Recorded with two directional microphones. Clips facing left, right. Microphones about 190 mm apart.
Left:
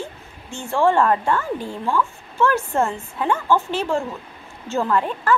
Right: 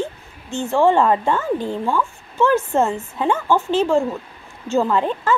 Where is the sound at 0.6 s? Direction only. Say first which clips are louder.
Right 2 dB; 20° right (ahead or behind).